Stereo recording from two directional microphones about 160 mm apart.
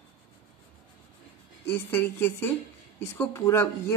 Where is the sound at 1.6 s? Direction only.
10° left (ahead or behind).